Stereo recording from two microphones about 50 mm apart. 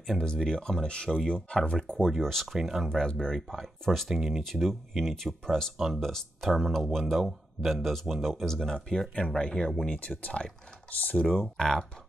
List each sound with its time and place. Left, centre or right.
0.2 s speech: centre
2.0 s speech: centre
2.9 s speech: centre
3.3 s speech: centre
4.1 s speech: centre
4.4 s speech: centre
9.9 s speech: left
11.3 s speech: centre